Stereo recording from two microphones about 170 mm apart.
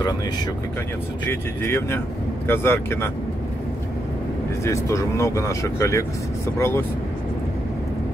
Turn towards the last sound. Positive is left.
turn(degrees=15)  # may be behind; listen again after turning